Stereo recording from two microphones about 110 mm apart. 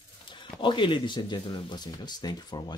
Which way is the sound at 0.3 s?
45° left (ahead or behind).